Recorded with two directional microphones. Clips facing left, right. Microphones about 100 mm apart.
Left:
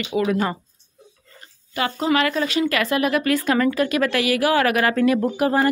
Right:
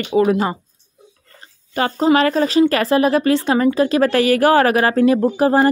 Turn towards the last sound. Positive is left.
turn(degrees=-30)  # may be behind; listen again after turning